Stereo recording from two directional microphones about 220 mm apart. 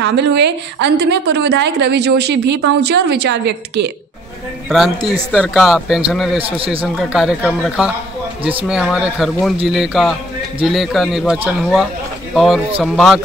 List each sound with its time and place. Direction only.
0.0 s a woman's voice: 50° right (ahead or behind)
4.6 s a man's voice: centre (ahead or behind)